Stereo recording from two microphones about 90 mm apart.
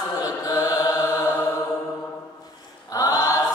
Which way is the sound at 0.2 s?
40° left (ahead or behind).